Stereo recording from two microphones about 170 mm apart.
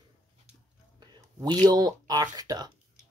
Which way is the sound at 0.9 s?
25° right (ahead or behind).